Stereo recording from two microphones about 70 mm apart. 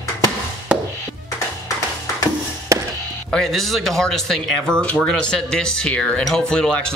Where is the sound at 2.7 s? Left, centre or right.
Right.